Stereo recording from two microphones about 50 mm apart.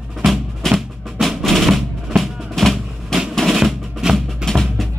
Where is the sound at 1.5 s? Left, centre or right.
Centre.